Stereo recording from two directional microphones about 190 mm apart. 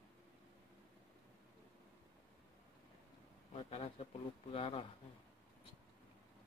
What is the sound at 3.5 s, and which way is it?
Speech, 35° left (ahead or behind).